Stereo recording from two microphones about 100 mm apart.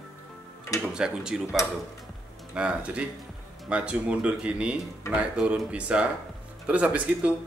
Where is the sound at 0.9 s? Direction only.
5° right (ahead or behind).